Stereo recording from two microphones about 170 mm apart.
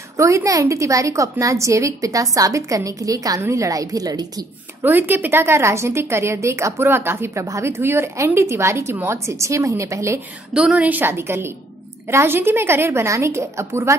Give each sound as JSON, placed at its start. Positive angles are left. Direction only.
{"t": 0.2, "sound": "a woman's voice", "side_deg": -15}
{"t": 4.8, "sound": "a woman's voice", "side_deg": -10}
{"t": 10.5, "sound": "a woman's voice", "side_deg": -5}